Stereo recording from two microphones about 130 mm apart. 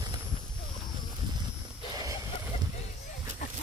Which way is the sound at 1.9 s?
25° right (ahead or behind).